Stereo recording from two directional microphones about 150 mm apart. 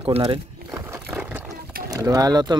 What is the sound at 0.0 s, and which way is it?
Speech, 40° right (ahead or behind).